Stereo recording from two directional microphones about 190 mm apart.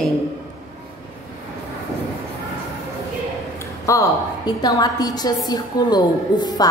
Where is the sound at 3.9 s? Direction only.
20° left (ahead or behind).